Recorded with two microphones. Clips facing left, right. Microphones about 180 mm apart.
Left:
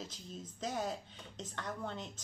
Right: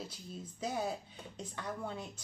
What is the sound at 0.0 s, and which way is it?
A woman's voice, 10° right (ahead or behind).